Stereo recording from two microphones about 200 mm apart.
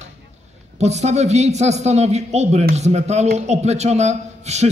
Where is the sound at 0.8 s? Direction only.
35° right (ahead or behind).